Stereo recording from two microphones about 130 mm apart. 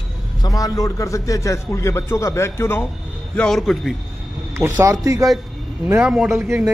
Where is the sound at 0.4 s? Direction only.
30° left (ahead or behind).